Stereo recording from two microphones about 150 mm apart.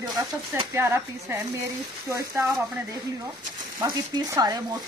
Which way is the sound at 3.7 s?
25° right (ahead or behind).